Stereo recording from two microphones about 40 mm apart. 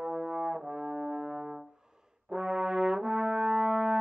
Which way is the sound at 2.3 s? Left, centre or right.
Centre.